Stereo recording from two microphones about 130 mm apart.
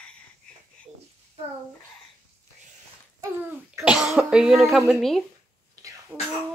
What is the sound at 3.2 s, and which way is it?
Speech, 20° right (ahead or behind).